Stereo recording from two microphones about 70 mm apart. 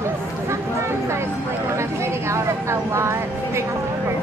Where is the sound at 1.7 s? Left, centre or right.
Right.